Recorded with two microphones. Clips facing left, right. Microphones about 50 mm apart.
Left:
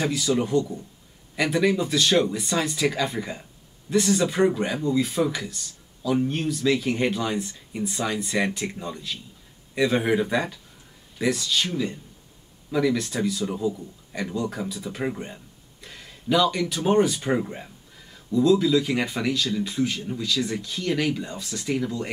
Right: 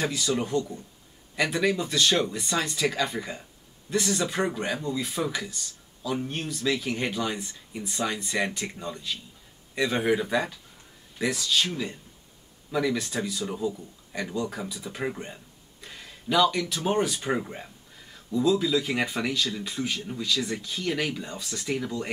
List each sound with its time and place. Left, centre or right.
0.4 s speech: centre